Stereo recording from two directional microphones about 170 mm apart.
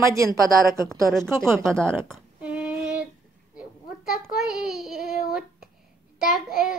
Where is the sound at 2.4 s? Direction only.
5° right (ahead or behind).